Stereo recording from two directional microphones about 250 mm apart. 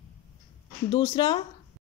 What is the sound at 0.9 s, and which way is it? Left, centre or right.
Speech, centre.